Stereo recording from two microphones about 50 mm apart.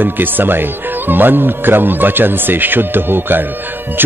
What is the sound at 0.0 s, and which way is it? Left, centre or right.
A man's voice, right.